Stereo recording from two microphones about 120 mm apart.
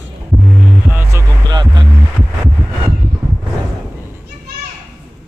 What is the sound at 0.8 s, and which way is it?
Music, 20° right (ahead or behind).